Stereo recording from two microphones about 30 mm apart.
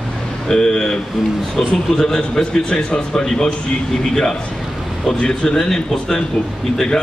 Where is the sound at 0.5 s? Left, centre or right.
Left.